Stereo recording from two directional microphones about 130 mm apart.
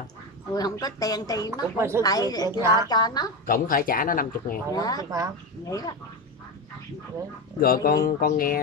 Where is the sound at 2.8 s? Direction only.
30° left (ahead or behind).